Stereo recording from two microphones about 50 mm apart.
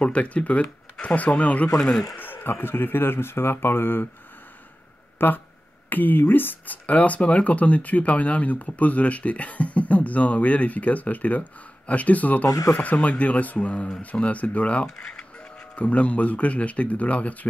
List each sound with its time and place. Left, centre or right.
0.0 s speech: left
1.8 s speech: centre
2.1 s speech: left
5.2 s speech: left
13.8 s speech: centre
14.2 s speech: left
15.0 s speech: centre
15.7 s speech: left